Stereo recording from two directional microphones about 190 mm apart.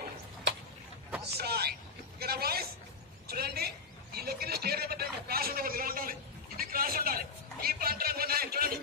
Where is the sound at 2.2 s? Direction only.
55° right (ahead or behind).